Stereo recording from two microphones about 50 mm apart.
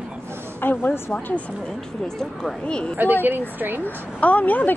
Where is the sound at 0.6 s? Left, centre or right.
Left.